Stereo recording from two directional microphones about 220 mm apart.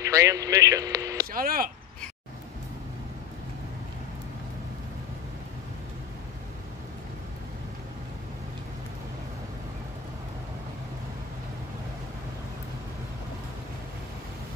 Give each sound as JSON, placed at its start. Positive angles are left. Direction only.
{"t": 0.0, "sound": "speech", "side_deg": -15}
{"t": 1.3, "sound": "speech", "side_deg": -40}